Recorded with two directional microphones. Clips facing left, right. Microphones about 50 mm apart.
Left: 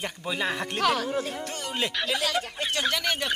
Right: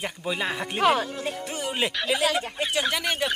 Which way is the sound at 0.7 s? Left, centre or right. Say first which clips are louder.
Right 3 dB; centre.